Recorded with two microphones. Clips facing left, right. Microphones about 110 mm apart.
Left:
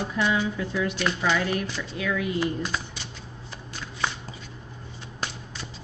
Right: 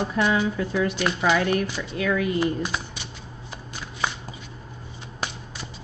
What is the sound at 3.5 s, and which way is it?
Shuffling cards, 15° right (ahead or behind).